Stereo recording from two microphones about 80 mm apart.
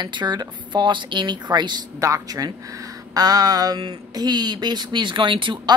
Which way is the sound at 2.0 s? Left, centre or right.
Right.